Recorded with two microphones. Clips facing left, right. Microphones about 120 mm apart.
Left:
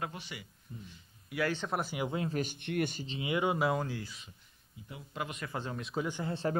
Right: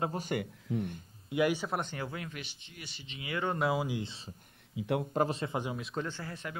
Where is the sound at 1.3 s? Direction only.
15° right (ahead or behind).